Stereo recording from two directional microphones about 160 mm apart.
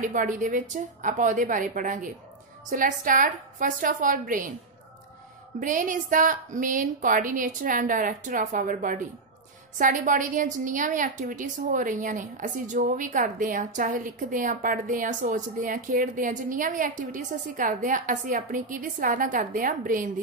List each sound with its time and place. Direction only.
0.0 s a woman's voice: 55° right (ahead or behind)
5.6 s a woman's voice: 55° right (ahead or behind)